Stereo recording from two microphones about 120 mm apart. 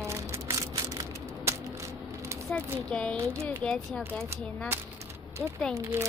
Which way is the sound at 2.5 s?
10° left (ahead or behind).